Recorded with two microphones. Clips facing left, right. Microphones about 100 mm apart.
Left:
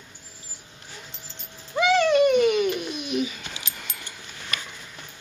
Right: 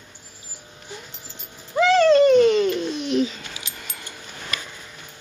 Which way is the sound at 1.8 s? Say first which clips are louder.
Right 4 dB; 10° left (ahead or behind).